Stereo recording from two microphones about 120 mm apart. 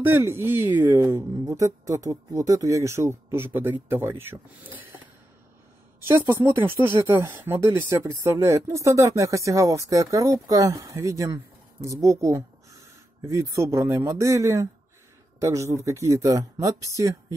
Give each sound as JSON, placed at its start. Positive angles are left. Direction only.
{"t": 0.0, "sound": "speech", "side_deg": -20}
{"t": 5.9, "sound": "speech", "side_deg": -20}